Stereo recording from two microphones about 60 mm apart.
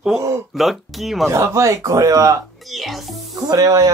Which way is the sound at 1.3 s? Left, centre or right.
Right.